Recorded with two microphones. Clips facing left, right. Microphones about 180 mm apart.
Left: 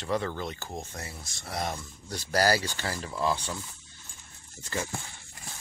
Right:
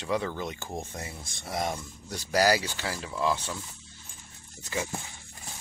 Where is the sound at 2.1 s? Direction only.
10° right (ahead or behind).